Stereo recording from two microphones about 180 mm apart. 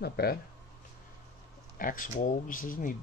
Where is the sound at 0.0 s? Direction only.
60° left (ahead or behind).